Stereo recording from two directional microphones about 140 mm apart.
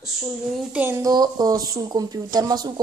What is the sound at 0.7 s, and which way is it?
Speech, 15° right (ahead or behind).